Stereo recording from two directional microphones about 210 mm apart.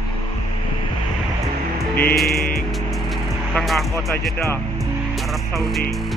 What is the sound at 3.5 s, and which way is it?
Speech, centre (ahead or behind).